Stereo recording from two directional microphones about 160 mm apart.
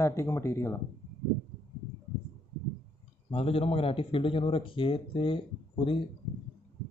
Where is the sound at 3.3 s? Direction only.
35° left (ahead or behind).